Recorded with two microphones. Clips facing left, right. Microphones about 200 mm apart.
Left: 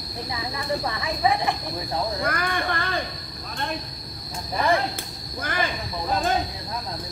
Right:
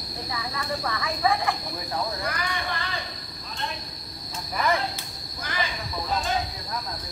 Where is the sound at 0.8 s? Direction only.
20° left (ahead or behind).